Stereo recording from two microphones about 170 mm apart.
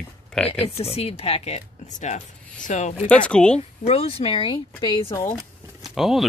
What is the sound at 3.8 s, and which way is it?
Speech, 35° left (ahead or behind).